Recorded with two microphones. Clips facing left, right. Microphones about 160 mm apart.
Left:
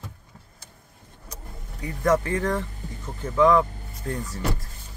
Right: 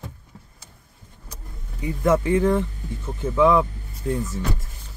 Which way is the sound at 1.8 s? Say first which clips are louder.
Right 2 dB; 10° right (ahead or behind).